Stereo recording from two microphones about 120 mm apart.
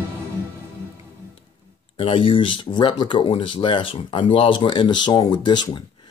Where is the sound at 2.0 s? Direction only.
50° left (ahead or behind).